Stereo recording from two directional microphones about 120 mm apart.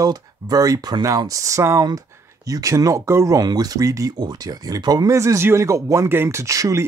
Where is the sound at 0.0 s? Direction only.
30° right (ahead or behind).